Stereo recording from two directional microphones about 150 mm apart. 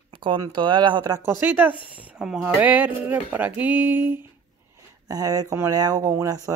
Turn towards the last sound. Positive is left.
turn(degrees=-25)  # may be behind; listen again after turning